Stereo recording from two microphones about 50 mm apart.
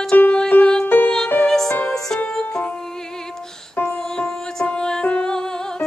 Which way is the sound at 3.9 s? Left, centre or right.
Centre.